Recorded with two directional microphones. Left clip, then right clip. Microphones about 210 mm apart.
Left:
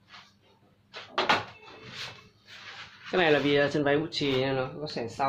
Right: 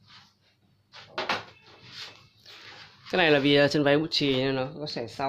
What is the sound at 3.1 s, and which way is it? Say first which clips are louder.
Speech: right 2 dB; 50° right (ahead or behind).